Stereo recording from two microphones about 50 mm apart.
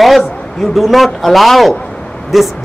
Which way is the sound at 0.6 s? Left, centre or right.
Centre.